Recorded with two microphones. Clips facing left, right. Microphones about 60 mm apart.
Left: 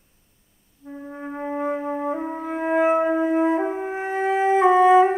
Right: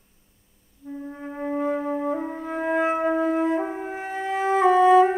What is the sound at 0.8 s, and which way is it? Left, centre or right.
Music, centre.